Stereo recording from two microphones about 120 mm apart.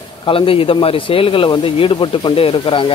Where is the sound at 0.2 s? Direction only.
50° left (ahead or behind).